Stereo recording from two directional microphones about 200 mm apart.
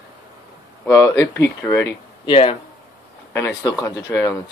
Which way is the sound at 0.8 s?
15° left (ahead or behind).